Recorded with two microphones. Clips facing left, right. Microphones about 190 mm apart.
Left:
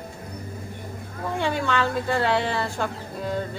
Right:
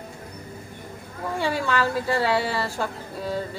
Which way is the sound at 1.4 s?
5° right (ahead or behind).